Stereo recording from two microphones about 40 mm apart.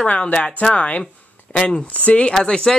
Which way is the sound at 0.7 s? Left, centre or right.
Left.